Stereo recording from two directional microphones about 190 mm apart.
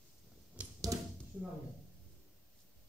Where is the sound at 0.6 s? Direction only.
5° right (ahead or behind).